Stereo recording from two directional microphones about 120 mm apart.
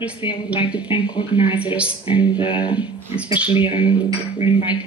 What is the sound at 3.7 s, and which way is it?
Speech, 10° right (ahead or behind).